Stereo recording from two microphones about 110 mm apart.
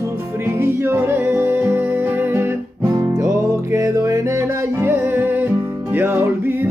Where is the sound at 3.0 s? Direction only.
30° right (ahead or behind).